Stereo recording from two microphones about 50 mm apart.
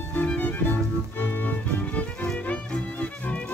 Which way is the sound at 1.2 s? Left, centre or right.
Left.